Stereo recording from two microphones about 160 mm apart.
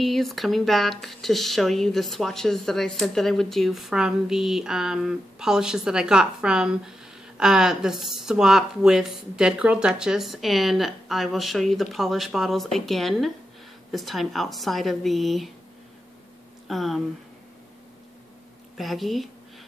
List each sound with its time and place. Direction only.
0.0 s speech: centre (ahead or behind)
16.6 s speech: centre (ahead or behind)
18.8 s speech: centre (ahead or behind)